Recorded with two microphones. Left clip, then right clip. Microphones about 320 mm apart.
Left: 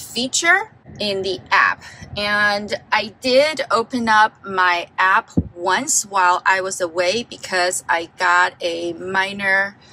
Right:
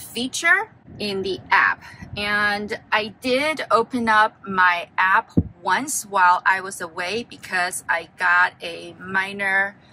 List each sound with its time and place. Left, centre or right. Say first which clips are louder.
0.1 s speech: left 3 dB; centre